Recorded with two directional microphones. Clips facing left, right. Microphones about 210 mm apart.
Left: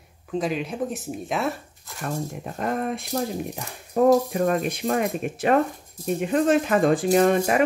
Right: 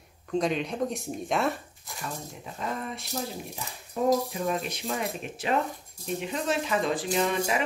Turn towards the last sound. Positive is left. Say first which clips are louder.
# left 8 dB
turn(degrees=50)  # may be behind; listen again after turning